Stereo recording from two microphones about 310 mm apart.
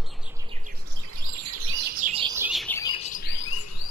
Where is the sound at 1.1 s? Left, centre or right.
Right.